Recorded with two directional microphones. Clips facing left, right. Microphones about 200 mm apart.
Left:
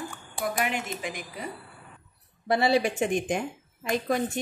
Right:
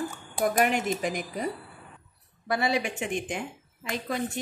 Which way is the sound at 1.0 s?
40° right (ahead or behind).